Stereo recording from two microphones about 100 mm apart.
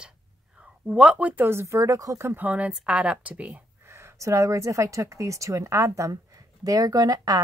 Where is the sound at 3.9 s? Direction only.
25° right (ahead or behind).